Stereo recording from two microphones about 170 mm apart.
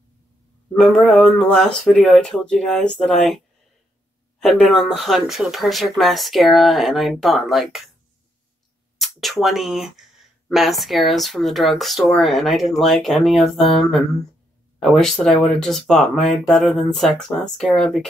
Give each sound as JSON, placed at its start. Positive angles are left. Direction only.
{"t": 0.7, "sound": "speech", "side_deg": 5}
{"t": 4.4, "sound": "speech", "side_deg": 0}
{"t": 8.9, "sound": "speech", "side_deg": 0}